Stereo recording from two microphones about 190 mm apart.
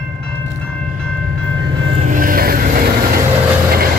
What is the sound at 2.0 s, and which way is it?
Vehicle, 45° right (ahead or behind).